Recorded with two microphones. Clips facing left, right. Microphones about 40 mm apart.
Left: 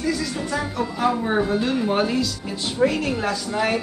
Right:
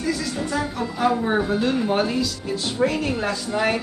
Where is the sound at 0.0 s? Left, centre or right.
Centre.